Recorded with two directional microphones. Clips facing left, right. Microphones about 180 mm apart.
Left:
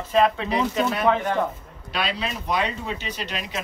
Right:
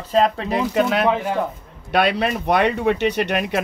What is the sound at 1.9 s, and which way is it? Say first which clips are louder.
Speech: right 9 dB; 60° right (ahead or behind).